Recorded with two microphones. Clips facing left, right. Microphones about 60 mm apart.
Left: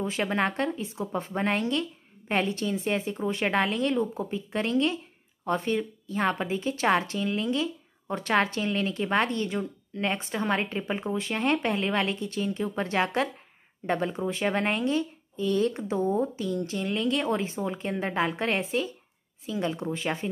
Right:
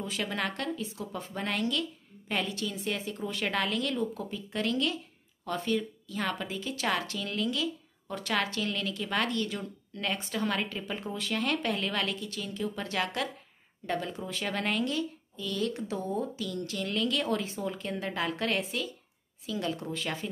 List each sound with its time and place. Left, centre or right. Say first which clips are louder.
0.0 s a woman's voice: left 6 dB; left